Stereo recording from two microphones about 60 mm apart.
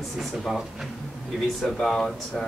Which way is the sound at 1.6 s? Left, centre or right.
Centre.